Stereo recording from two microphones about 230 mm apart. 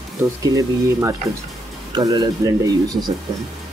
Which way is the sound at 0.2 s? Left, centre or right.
Centre.